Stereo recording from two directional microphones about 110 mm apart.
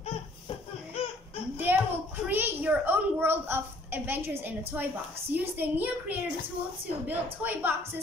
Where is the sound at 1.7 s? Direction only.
20° right (ahead or behind).